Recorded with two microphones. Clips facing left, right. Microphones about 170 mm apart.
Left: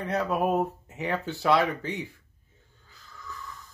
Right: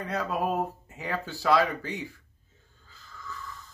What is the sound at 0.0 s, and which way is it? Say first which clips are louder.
Speech: left 3 dB; 20° left (ahead or behind).